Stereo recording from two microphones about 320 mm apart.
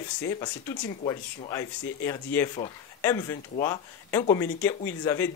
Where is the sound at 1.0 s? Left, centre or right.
Centre.